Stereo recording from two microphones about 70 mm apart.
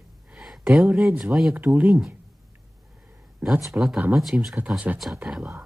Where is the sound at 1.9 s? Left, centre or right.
Centre.